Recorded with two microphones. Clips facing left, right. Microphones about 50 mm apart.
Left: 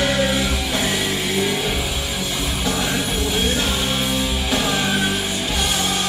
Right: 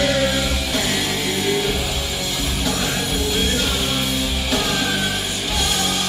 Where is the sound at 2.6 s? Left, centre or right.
Centre.